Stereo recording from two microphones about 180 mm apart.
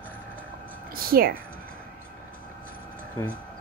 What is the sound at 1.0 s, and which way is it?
Speech, 55° right (ahead or behind).